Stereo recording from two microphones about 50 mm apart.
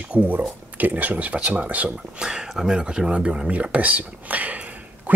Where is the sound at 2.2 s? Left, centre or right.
Centre.